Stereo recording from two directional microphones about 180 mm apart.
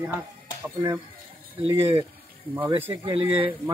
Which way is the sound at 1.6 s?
30° right (ahead or behind).